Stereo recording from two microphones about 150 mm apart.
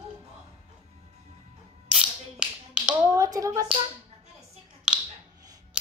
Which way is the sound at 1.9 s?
10° right (ahead or behind).